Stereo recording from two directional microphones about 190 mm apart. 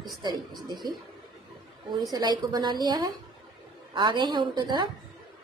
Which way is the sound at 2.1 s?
20° right (ahead or behind).